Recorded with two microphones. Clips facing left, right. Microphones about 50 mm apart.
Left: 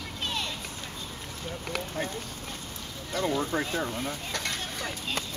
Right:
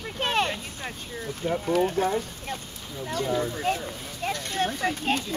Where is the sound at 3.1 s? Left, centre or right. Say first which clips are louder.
Right 1 dB; left.